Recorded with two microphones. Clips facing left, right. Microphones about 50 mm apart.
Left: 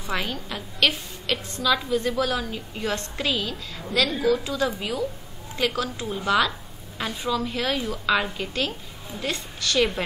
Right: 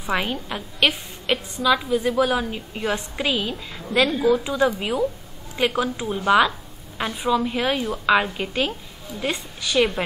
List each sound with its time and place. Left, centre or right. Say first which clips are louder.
0.0 s a woman's voice: right 4 dB; right